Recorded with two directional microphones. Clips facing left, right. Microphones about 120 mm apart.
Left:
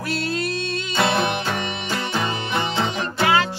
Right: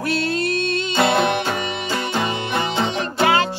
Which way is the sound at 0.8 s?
20° right (ahead or behind).